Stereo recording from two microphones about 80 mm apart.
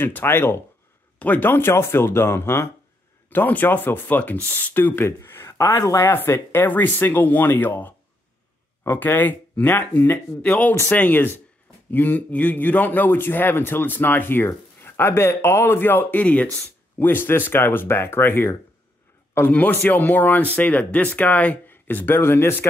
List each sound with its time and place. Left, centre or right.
0.0 s a man's voice: left
5.9 s a man's voice: left
10.4 s a man's voice: centre